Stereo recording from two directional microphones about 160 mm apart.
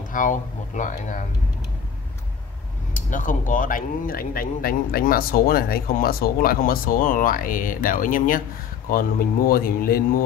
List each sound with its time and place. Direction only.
0.1 s speech: 55° left (ahead or behind)
2.9 s speech: 55° left (ahead or behind)